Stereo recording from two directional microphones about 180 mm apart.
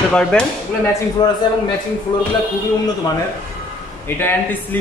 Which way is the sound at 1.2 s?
20° left (ahead or behind).